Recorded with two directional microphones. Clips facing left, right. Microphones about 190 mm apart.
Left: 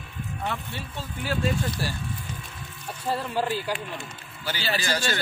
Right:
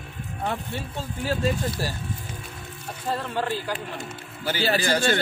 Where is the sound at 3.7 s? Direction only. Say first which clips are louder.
Even; 45° right (ahead or behind).